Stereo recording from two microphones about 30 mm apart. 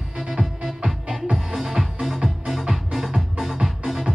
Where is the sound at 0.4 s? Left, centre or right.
Left.